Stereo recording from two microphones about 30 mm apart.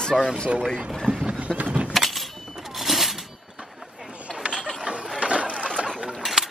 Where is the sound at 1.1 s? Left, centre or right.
Right.